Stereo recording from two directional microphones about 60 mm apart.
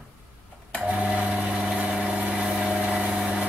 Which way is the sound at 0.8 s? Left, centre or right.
Centre.